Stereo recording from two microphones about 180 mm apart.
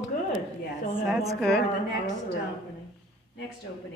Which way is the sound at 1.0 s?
Centre (ahead or behind).